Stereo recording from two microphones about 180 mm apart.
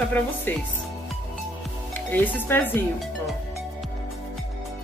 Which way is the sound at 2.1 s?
10° left (ahead or behind).